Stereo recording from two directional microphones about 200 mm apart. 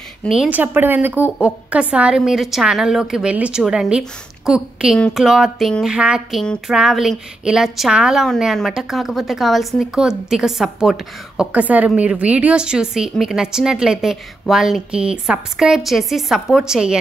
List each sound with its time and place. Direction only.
0.2 s speech: 5° right (ahead or behind)